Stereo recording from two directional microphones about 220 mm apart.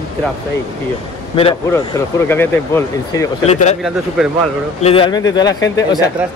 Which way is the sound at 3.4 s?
30° left (ahead or behind).